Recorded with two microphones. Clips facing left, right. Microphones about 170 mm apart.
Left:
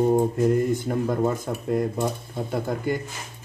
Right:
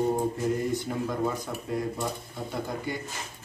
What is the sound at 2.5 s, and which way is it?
Speech, 50° left (ahead or behind).